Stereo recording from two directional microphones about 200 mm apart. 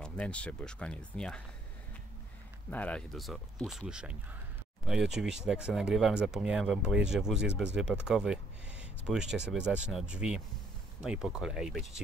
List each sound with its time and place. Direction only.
0.0 s speech: 5° left (ahead or behind)
2.7 s speech: 5° left (ahead or behind)